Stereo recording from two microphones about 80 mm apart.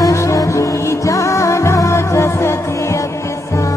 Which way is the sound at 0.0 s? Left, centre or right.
Left.